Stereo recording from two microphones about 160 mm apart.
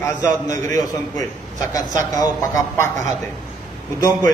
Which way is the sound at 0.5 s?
20° left (ahead or behind).